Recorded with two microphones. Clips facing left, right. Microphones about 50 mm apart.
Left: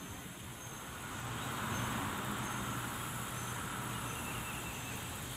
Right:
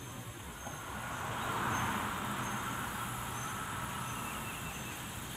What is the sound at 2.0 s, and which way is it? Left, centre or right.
Vehicle, centre.